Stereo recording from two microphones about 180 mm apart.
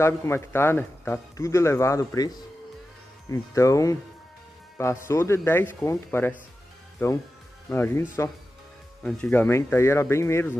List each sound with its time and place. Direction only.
0.0 s a man's voice: 15° left (ahead or behind)
5.0 s a man's voice: 15° left (ahead or behind)